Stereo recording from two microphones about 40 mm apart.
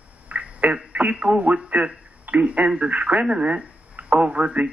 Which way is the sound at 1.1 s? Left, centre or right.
Right.